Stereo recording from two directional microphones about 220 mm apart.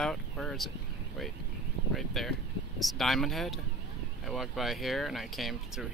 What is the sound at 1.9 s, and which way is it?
Speech, centre (ahead or behind).